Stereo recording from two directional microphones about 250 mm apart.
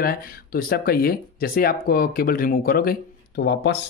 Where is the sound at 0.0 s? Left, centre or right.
Left.